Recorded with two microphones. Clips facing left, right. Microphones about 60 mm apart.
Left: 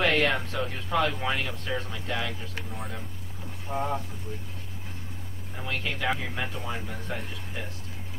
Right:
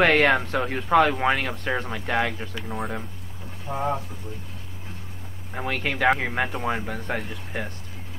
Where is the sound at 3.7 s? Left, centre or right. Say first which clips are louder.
Right 1 dB; right.